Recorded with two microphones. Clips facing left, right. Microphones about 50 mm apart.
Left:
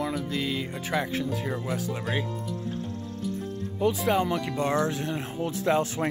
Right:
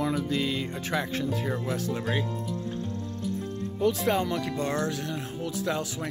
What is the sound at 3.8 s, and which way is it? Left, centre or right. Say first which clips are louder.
Speech: left 1 dB; centre.